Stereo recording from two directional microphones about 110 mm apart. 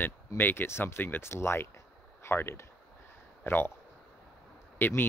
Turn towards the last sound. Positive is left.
turn(degrees=20)  # may be behind; listen again after turning